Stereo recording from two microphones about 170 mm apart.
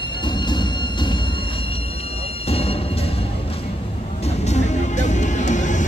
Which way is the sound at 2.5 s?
35° left (ahead or behind).